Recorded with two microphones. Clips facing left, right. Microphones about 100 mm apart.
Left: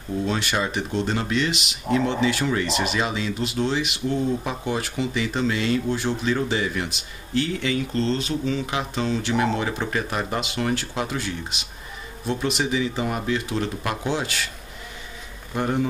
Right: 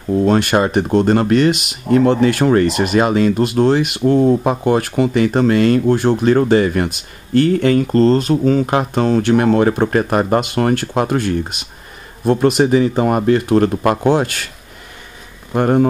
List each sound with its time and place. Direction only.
0.2 s speech: 50° right (ahead or behind)
15.5 s speech: 55° right (ahead or behind)